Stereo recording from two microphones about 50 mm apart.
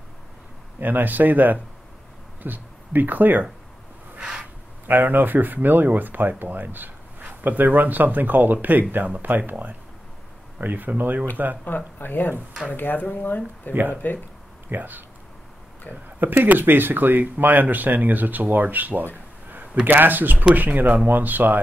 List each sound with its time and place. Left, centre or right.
0.7 s speech: right
4.8 s speech: right
11.6 s speech: left
14.7 s speech: right